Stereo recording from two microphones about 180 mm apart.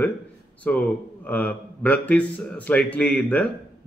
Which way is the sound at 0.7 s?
10° left (ahead or behind).